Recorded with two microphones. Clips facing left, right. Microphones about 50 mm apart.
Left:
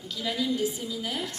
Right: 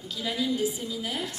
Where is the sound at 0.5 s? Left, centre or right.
Centre.